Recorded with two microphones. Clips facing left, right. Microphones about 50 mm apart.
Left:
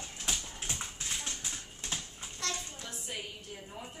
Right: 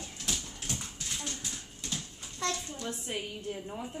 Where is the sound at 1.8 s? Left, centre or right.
Left.